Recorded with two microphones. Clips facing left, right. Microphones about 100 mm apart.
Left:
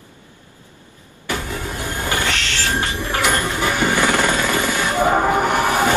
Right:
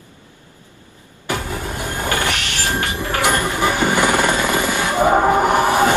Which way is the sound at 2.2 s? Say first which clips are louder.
Even; 15° right (ahead or behind).